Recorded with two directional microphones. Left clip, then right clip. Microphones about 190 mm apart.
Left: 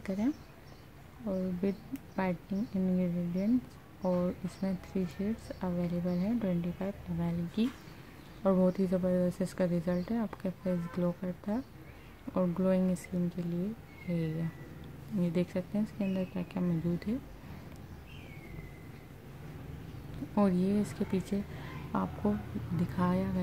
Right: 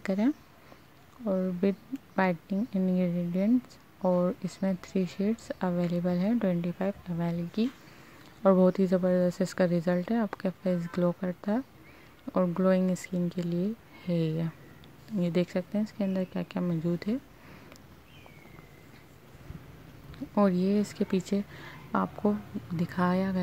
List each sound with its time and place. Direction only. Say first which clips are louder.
0.0 s speech: right 5 dB; 35° right (ahead or behind)
20.3 s speech: right 4 dB; 30° right (ahead or behind)